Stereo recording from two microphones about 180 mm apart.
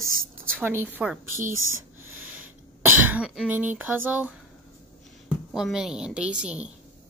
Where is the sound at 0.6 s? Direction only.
10° right (ahead or behind).